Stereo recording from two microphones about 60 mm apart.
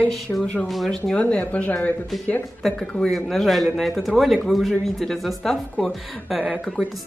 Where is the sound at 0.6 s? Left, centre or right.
Centre.